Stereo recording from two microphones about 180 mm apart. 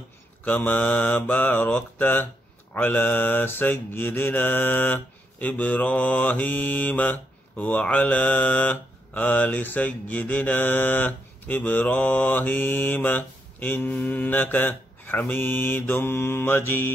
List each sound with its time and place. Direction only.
0.5 s mantra: 10° left (ahead or behind)